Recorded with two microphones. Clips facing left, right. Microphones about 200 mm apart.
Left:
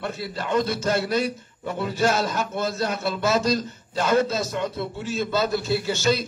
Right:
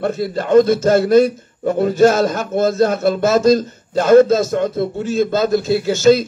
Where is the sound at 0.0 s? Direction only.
45° right (ahead or behind).